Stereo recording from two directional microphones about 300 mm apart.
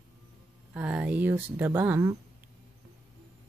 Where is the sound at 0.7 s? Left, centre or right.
Centre.